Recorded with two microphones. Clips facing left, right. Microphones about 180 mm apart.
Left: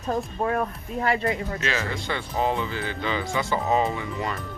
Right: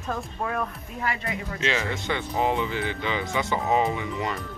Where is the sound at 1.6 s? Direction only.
20° right (ahead or behind).